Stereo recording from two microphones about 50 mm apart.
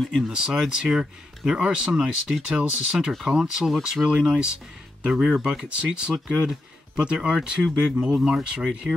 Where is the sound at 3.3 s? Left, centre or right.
Centre.